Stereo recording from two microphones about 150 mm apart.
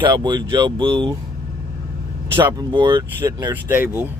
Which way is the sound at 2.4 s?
30° right (ahead or behind).